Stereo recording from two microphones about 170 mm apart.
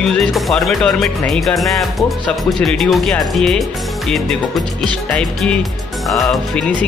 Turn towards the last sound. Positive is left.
turn(degrees=0)  # may be behind; listen again after turning